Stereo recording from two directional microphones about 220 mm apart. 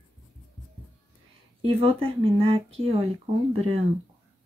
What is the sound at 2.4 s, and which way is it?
Speech, 25° right (ahead or behind).